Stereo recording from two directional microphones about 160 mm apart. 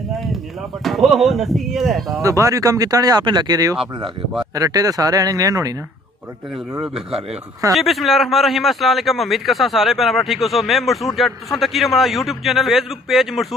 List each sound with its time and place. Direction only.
0.8 s a man's voice: centre (ahead or behind)
2.2 s speech: 20° right (ahead or behind)
7.7 s a man's voice: centre (ahead or behind)